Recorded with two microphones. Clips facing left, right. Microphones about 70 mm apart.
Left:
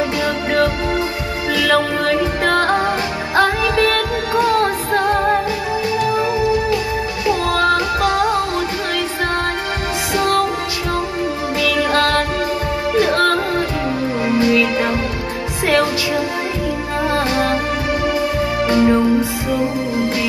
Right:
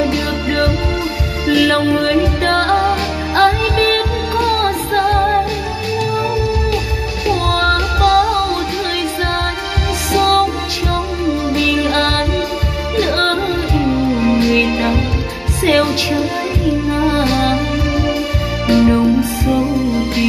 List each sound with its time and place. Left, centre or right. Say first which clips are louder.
1.5 s music: right 4 dB; left
8.0 s music: right 4 dB; left
10.1 s music: right 4 dB; left
11.8 s music: even; left
14.4 s music: right 1 dB; left
18.7 s music: right 3 dB; left